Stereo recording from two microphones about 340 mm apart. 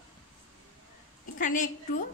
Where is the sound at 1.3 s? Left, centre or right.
Left.